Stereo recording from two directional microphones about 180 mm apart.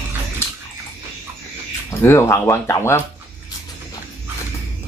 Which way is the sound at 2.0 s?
15° left (ahead or behind).